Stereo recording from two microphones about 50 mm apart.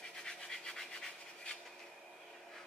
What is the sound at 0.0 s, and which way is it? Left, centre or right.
Scratch, centre.